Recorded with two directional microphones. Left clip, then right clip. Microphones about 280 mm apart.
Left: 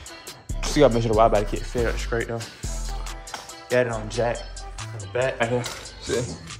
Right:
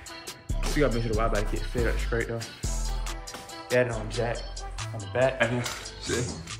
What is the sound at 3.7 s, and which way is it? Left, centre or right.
Speech, centre.